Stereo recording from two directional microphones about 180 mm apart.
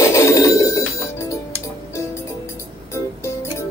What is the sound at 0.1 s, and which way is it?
Telephone bell ringing, 15° left (ahead or behind).